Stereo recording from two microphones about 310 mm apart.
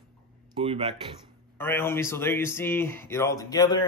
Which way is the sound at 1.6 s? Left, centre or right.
Centre.